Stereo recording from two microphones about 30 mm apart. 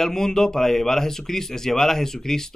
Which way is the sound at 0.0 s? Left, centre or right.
Centre.